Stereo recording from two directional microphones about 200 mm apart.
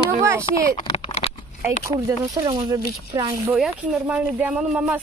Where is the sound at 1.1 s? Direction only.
30° left (ahead or behind).